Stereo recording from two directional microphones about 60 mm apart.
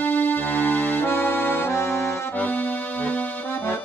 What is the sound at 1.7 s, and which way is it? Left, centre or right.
Accordion, left.